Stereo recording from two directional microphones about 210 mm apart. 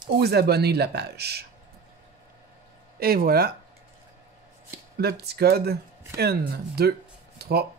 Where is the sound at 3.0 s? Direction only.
45° right (ahead or behind).